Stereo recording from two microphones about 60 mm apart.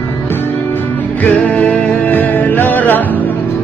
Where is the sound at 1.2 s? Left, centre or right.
Left.